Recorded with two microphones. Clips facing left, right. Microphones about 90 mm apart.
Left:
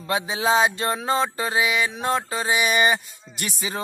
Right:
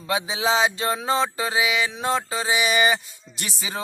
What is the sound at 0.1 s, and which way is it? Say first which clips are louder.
Music: left 1 dB; centre (ahead or behind).